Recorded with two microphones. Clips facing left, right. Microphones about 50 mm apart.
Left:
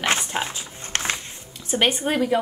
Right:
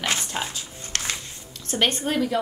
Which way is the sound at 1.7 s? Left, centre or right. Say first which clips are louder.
Left 2 dB; centre.